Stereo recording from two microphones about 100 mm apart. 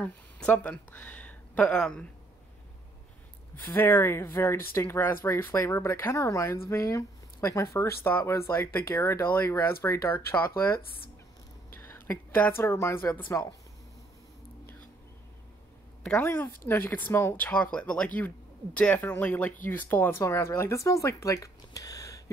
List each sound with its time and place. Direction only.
0.0 s speech: 15° left (ahead or behind)
3.5 s speech: 20° left (ahead or behind)
11.7 s a sound: 25° left (ahead or behind)
12.6 s speech: 30° left (ahead or behind)
16.2 s speech: 20° left (ahead or behind)
17.5 s speech: 10° left (ahead or behind); by 22.2 s 35° left (ahead or behind)